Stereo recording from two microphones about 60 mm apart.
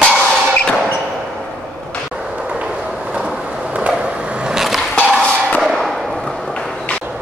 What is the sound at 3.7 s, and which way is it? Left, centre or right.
Vehicle, centre.